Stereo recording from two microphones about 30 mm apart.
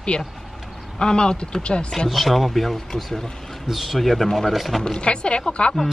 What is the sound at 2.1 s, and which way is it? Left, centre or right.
Speech, centre.